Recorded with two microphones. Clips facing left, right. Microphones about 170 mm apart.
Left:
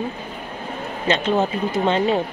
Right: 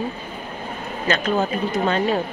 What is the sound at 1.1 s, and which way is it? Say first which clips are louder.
A woman's voice: left 2 dB; 25° left (ahead or behind).